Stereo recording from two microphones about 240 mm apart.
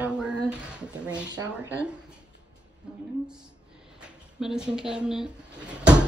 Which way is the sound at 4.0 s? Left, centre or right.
Centre.